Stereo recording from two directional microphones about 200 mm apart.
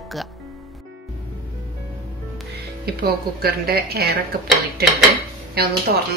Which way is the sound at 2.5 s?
50° right (ahead or behind).